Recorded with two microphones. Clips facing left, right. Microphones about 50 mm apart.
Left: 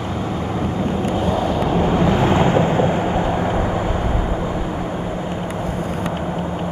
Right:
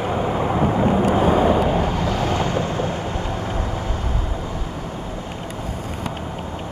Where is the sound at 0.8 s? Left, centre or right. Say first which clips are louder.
Right 4 dB; right.